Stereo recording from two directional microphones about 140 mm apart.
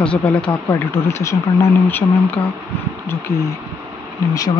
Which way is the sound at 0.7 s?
20° left (ahead or behind).